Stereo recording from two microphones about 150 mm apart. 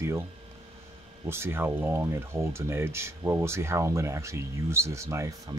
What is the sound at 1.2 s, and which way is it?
Speech, 15° right (ahead or behind).